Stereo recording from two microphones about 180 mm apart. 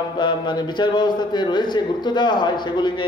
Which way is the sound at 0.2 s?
25° left (ahead or behind).